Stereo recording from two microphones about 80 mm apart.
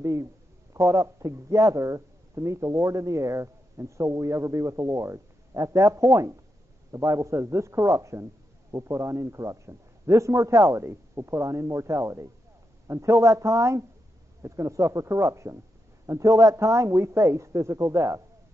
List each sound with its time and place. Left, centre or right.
0.0 s a man's voice: right